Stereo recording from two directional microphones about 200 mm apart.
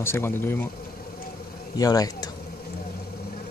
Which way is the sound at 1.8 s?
20° left (ahead or behind).